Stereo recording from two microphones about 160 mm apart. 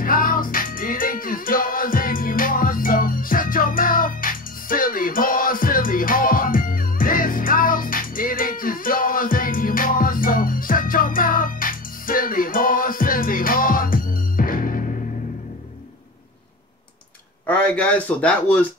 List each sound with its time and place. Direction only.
0.0 s music: 60° left (ahead or behind)
17.5 s speech: 10° left (ahead or behind)